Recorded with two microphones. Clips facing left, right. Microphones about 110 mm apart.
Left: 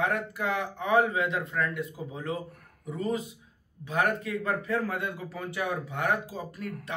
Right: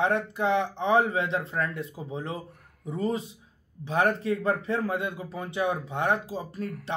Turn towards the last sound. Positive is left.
turn(degrees=-30)  # may be behind; listen again after turning